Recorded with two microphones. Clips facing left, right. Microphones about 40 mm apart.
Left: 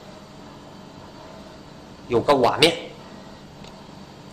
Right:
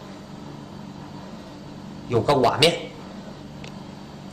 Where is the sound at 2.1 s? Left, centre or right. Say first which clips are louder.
Left 1 dB; centre.